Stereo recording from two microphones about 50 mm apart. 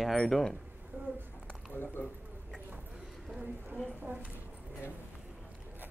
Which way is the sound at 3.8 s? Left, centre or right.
Right.